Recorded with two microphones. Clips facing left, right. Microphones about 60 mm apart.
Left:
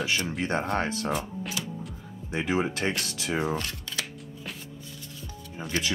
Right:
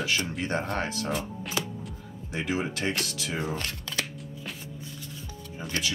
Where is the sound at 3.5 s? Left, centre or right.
Right.